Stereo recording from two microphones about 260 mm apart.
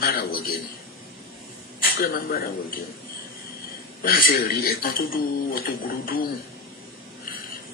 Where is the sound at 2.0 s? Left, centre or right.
Left.